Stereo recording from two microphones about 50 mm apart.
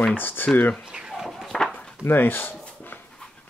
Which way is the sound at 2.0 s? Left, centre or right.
Left.